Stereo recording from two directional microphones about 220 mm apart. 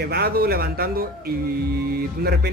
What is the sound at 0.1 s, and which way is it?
A man's voice, 45° right (ahead or behind).